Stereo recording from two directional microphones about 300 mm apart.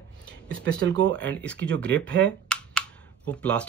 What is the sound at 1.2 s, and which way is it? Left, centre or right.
Speech, centre.